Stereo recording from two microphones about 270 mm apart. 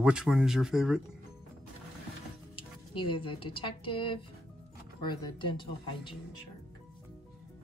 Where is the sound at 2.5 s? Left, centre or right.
Centre.